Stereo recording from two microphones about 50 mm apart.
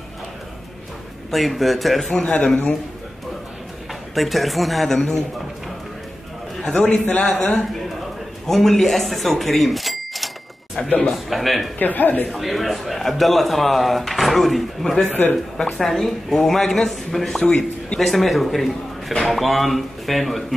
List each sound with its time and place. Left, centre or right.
1.3 s a man's voice: centre
2.4 s a man's voice: left
4.1 s a man's voice: centre
6.6 s a man's voice: centre
6.9 s a man's voice: left
7.2 s a man's voice: centre
11.8 s speech: left
12.3 s a man's voice: centre
18.0 s a man's voice: centre